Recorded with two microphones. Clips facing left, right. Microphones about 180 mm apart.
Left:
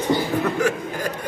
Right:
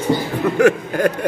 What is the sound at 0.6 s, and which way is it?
Speech, 65° right (ahead or behind).